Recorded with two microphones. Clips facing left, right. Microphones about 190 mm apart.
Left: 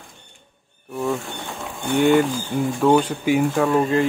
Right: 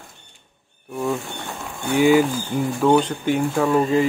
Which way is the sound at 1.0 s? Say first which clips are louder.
Even; centre (ahead or behind).